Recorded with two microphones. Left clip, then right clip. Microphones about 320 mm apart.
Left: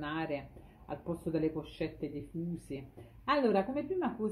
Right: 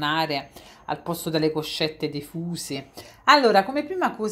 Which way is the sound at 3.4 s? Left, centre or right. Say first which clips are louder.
Right 12 dB; right.